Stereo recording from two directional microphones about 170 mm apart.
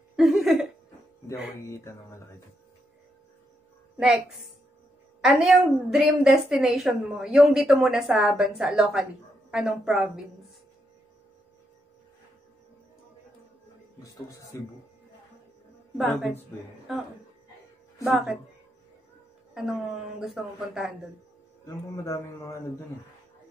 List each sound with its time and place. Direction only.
0.1 s a sound: centre (ahead or behind)
1.7 s speech: 20° left (ahead or behind)
3.9 s a woman's voice: 5° right (ahead or behind)
5.2 s a woman's voice: 5° right (ahead or behind)
14.0 s speech: 20° left (ahead or behind)
16.0 s a woman's voice: centre (ahead or behind)
18.0 s a woman's voice: 5° right (ahead or behind)
19.5 s a woman's voice: 5° right (ahead or behind)
21.6 s a man's voice: 20° left (ahead or behind)